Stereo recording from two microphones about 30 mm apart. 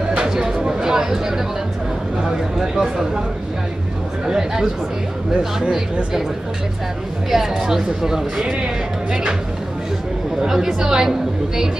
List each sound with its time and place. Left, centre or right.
0.2 s a sound: right
0.9 s a woman's voice: centre
4.3 s chatter: centre
7.2 s a woman's voice: centre
10.4 s a woman's voice: centre